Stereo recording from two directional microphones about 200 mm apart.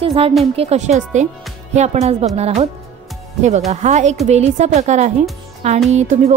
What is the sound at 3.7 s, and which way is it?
Speech, 35° right (ahead or behind).